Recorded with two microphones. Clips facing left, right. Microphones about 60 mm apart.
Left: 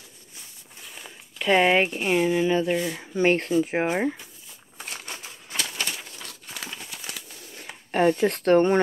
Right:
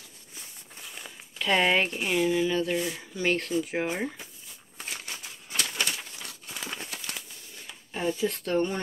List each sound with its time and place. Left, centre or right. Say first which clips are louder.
1.4 s speech: left 4 dB; centre
2.7 s speech: left 4 dB; centre
3.0 s speech: left 6 dB; left
7.6 s speech: left 9 dB; left